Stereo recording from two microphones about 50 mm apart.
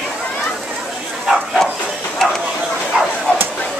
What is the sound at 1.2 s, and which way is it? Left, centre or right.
Bow-wow, centre.